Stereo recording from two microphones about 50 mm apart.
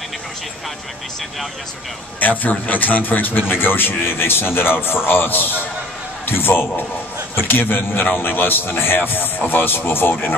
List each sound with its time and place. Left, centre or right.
2.1 s a man's voice: left